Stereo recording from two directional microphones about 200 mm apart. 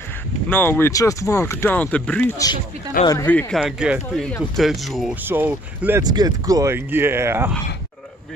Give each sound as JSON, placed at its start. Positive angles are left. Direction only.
{"t": 0.5, "sound": "speech", "side_deg": 10}
{"t": 2.3, "sound": "speech", "side_deg": 20}
{"t": 3.3, "sound": "speech", "side_deg": 0}